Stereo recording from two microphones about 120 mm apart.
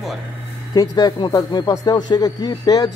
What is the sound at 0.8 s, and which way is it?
Speech, 35° left (ahead or behind).